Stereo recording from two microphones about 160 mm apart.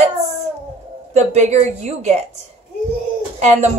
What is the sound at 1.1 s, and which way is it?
A woman's voice, 45° right (ahead or behind).